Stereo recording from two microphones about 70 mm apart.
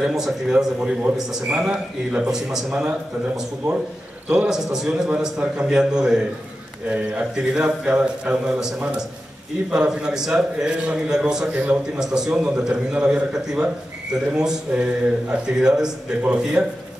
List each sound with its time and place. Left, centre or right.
0.0 s a man's voice: centre
11.5 s a man's voice: right
12.0 s a man's voice: centre